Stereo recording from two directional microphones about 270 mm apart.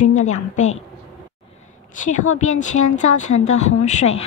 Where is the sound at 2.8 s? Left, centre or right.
Left.